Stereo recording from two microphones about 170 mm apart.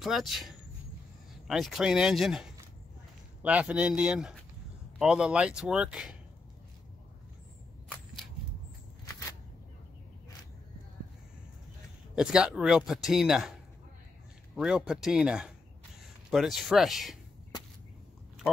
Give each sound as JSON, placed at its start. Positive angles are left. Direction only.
{"t": 0.0, "sound": "speech", "side_deg": 0}
{"t": 3.4, "sound": "speech", "side_deg": -5}
{"t": 12.2, "sound": "speech", "side_deg": -5}